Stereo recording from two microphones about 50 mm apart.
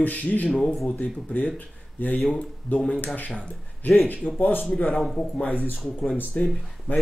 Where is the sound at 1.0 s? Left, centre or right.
Left.